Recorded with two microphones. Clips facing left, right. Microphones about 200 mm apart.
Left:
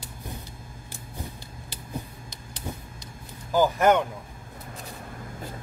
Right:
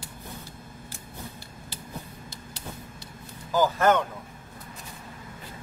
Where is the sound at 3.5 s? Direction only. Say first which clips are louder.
Left 2 dB; 15° left (ahead or behind).